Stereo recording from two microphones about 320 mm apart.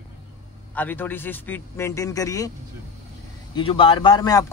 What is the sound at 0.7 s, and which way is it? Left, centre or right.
A man's voice, centre.